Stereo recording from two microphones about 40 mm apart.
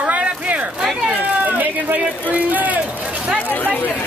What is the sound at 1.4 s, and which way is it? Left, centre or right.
Speech, right.